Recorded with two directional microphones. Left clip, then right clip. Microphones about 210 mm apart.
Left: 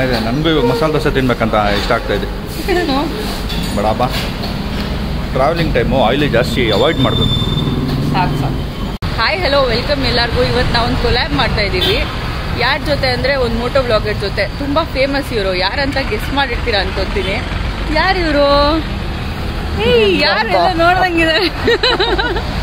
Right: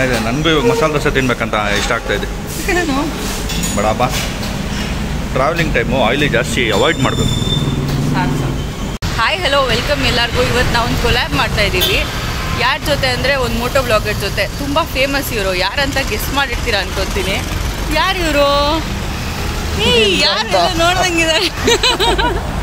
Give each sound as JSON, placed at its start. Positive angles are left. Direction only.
{"t": 0.0, "sound": "speech", "side_deg": 10}
{"t": 3.7, "sound": "speech", "side_deg": 5}
{"t": 5.4, "sound": "speech", "side_deg": 5}
{"t": 9.2, "sound": "speech", "side_deg": 0}
{"t": 17.9, "sound": "speech", "side_deg": 15}
{"t": 19.8, "sound": "speech", "side_deg": 25}